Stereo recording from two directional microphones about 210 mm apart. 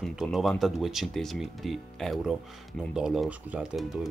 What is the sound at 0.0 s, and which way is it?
Speech, centre (ahead or behind).